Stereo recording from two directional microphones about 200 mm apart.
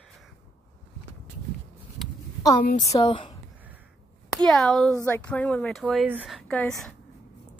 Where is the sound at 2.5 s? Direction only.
45° left (ahead or behind).